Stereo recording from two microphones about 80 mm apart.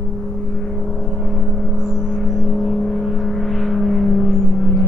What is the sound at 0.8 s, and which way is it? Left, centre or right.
Vehicle, centre.